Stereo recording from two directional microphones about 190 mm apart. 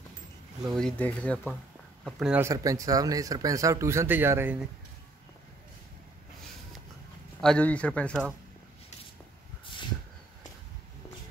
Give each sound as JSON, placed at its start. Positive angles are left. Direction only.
{"t": 0.7, "sound": "speech", "side_deg": 5}
{"t": 2.0, "sound": "speech", "side_deg": -5}
{"t": 2.4, "sound": "speech", "side_deg": -15}
{"t": 7.4, "sound": "speech", "side_deg": 5}